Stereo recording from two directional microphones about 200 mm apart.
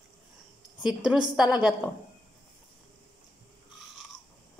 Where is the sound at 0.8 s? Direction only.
5° right (ahead or behind).